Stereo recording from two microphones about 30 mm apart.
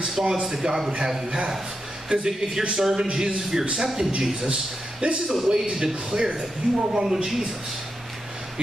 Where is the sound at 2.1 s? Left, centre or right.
Centre.